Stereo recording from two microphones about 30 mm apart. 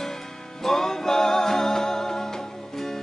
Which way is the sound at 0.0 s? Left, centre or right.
Centre.